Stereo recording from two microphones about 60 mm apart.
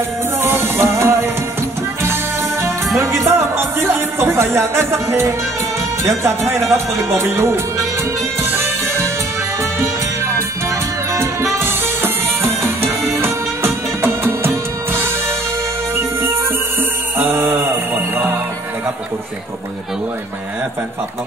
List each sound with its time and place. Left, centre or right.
0.4 s music: right
2.6 s music: right
8.5 s music: right
11.1 s music: right